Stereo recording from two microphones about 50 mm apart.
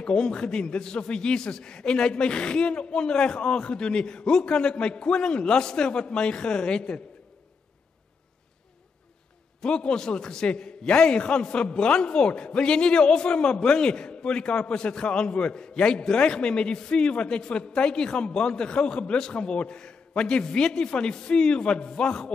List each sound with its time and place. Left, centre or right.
0.0 s a man's voice: centre
9.6 s a man's voice: centre